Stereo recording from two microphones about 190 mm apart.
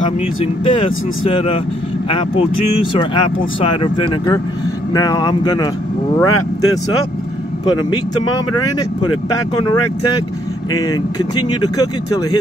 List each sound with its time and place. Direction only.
0.7 s speech: 25° left (ahead or behind)
10.7 s speech: 20° left (ahead or behind)